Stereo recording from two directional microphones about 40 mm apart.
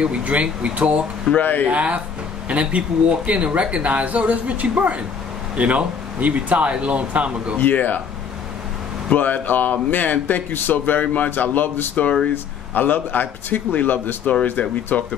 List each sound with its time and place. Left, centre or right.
0.0 s speech: right
1.4 s a man's voice: left
1.7 s speech: right
7.5 s a man's voice: left
9.1 s a man's voice: left